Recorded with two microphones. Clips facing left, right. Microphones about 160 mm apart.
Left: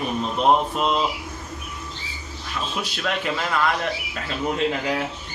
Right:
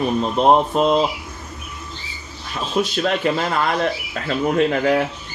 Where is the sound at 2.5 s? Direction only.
40° right (ahead or behind).